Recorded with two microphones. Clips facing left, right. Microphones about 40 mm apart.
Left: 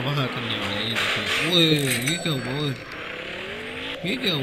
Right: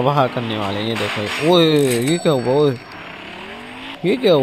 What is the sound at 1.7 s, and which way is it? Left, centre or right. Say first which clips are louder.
Speech: right 9 dB; left.